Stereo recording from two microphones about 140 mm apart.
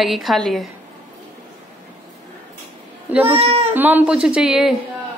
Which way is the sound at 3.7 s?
15° right (ahead or behind).